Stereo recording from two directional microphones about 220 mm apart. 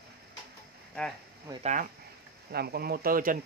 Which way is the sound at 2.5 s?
45° right (ahead or behind).